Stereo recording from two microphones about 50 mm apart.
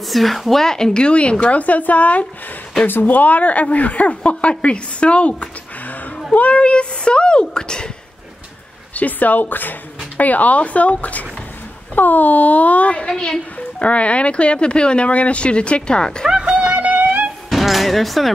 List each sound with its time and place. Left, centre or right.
0.1 s a woman's voice: centre
8.9 s a woman's voice: left; by 16.3 s centre
16.3 s a sound: right
17.5 s music: centre